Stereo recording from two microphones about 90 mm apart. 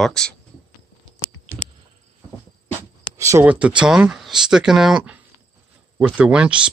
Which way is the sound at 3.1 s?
35° right (ahead or behind).